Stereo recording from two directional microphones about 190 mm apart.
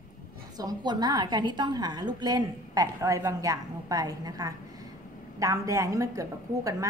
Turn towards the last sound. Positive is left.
turn(degrees=-15)  # may be behind; listen again after turning